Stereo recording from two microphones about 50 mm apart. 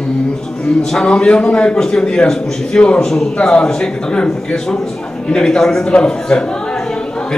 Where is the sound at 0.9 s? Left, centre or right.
Centre.